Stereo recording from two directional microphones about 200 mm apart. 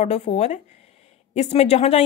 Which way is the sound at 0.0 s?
30° left (ahead or behind).